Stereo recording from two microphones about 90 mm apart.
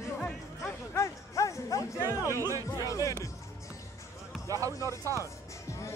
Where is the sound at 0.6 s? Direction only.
30° left (ahead or behind).